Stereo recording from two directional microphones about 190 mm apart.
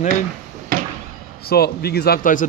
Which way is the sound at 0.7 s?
50° right (ahead or behind).